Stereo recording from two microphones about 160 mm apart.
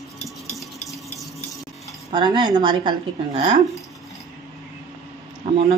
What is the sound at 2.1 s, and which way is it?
Speech, 30° right (ahead or behind).